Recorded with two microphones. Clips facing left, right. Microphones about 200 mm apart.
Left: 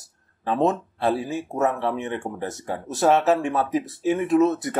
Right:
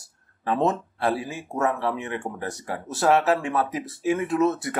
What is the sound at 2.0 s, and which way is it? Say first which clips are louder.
Speech: left 3 dB; 15° right (ahead or behind).